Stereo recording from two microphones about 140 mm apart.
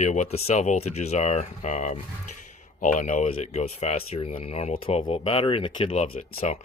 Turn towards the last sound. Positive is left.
turn(degrees=50)  # may be behind; listen again after turning